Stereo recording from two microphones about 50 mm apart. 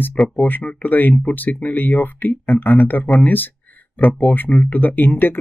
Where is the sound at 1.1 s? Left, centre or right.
Left.